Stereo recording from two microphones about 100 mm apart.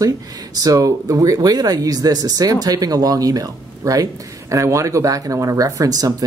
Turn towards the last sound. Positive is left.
turn(degrees=-35)  # may be behind; listen again after turning